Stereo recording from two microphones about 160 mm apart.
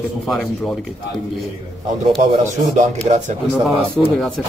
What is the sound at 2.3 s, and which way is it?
Speech, 45° right (ahead or behind).